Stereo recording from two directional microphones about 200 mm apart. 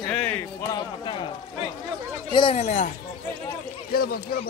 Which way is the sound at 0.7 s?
25° left (ahead or behind).